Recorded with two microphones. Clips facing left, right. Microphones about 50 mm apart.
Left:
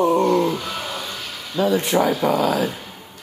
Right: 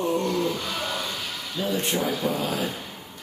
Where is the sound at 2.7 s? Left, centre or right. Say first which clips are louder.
Left 1 dB; centre.